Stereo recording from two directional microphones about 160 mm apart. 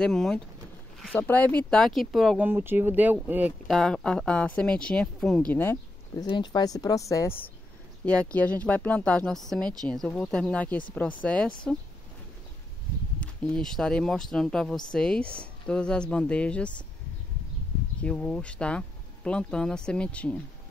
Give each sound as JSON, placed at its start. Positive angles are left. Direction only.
{"t": 0.0, "sound": "speech", "side_deg": 0}
{"t": 2.4, "sound": "speech", "side_deg": -15}
{"t": 3.6, "sound": "speech", "side_deg": 0}
{"t": 6.2, "sound": "speech", "side_deg": 30}
{"t": 13.2, "sound": "speech", "side_deg": 5}
{"t": 18.0, "sound": "speech", "side_deg": 5}